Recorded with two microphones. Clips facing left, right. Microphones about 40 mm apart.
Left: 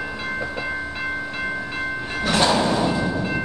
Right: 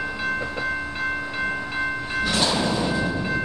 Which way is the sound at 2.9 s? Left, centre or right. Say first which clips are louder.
Left 1 dB; centre.